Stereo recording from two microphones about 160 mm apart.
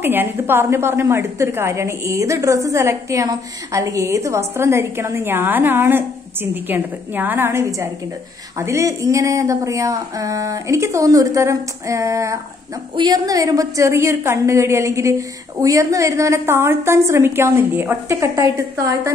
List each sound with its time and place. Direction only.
0.0 s a woman's voice: 15° right (ahead or behind)